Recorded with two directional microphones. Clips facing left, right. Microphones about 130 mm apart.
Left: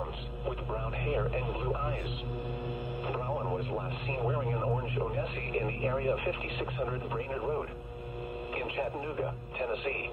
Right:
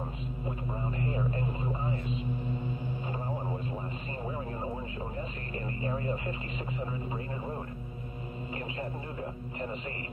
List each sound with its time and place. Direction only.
0.5 s radio: 65° left (ahead or behind)
4.1 s speech: 60° left (ahead or behind)
9.2 s speech: 60° left (ahead or behind)